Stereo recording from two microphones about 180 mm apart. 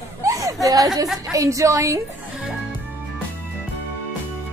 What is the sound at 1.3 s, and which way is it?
A woman's voice, 15° right (ahead or behind).